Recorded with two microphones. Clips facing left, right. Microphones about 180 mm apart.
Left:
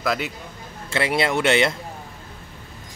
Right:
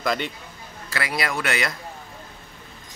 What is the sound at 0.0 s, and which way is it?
Speech, centre (ahead or behind).